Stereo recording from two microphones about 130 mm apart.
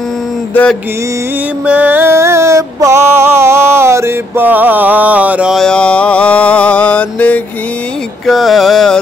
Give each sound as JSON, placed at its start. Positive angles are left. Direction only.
{"t": 1.7, "sound": "music", "side_deg": -10}
{"t": 5.6, "sound": "mantra", "side_deg": 5}
{"t": 8.3, "sound": "a sound", "side_deg": 0}